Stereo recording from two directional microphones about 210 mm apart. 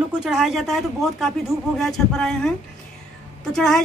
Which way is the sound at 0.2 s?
5° right (ahead or behind).